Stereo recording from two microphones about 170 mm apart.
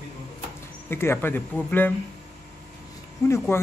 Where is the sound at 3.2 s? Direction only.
15° left (ahead or behind).